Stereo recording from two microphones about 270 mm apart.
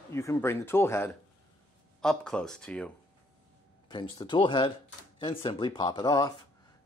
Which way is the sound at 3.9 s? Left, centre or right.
Centre.